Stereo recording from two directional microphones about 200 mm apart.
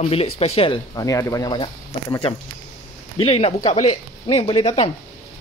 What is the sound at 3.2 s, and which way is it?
Speech, 30° left (ahead or behind).